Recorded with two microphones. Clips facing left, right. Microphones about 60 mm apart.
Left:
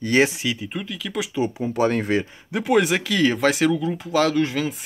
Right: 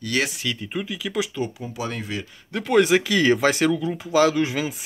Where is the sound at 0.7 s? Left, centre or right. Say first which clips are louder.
Right 2 dB; centre.